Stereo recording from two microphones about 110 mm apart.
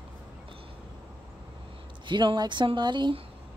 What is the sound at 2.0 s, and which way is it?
Speech, 45° right (ahead or behind).